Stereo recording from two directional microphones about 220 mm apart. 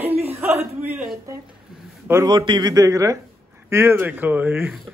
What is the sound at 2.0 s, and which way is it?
A man's voice, 15° right (ahead or behind).